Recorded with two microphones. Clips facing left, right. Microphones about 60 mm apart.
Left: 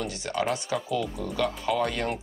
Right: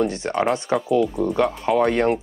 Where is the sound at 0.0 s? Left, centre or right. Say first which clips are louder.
Right 8 dB; right.